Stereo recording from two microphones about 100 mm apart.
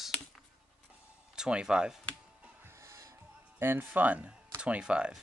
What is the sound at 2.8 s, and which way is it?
Music, 30° right (ahead or behind).